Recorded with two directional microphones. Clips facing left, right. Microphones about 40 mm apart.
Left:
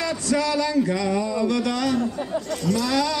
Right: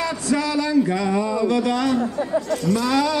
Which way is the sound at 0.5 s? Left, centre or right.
Centre.